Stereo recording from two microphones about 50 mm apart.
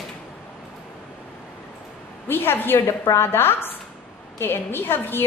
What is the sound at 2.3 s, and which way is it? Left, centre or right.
A woman's voice, left.